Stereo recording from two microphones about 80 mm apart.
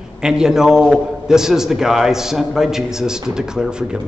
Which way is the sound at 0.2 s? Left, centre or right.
Centre.